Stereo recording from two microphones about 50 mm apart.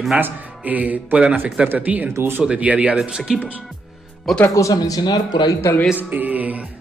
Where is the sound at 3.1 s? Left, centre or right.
Centre.